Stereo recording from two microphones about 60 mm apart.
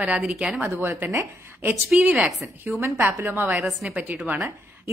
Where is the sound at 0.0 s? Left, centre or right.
Centre.